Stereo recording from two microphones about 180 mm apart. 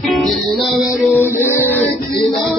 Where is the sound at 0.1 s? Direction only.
Centre (ahead or behind).